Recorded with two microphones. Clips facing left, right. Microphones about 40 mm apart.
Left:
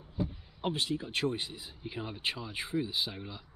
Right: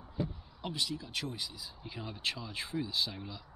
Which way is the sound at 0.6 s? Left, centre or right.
Left.